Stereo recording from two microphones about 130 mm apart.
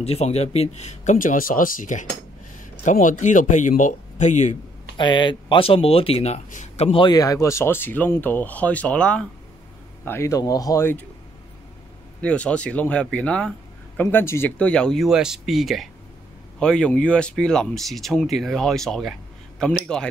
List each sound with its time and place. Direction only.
0.0 s speech: 55° left (ahead or behind)
4.9 s speech: 35° left (ahead or behind); by 6.9 s 60° left (ahead or behind)
6.9 s speech: 40° left (ahead or behind)
7.2 s speech: 25° left (ahead or behind); by 9.3 s 10° left (ahead or behind)
10.0 s speech: 20° left (ahead or behind)
12.2 s speech: 10° left (ahead or behind)